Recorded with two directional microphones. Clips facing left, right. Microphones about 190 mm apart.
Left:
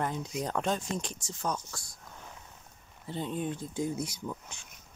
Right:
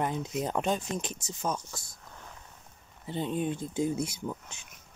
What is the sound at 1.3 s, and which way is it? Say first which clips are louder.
Speech: right 1 dB; 5° right (ahead or behind).